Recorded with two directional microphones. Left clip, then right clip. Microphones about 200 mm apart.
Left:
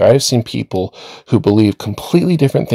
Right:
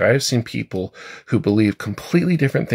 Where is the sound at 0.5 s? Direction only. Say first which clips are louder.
Left 7 dB; 35° left (ahead or behind).